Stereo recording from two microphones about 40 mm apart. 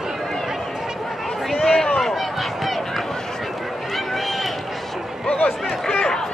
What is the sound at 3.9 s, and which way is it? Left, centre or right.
Run, centre.